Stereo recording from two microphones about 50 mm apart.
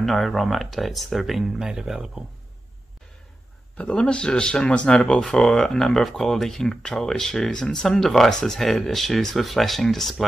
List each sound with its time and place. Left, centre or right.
0.0 s speech: centre
1.7 s speech: centre
3.7 s speech: left
4.0 s speech: centre